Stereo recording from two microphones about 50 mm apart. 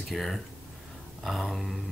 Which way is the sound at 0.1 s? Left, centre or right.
Centre.